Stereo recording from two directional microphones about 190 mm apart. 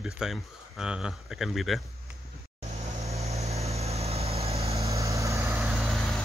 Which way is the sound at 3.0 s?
35° right (ahead or behind).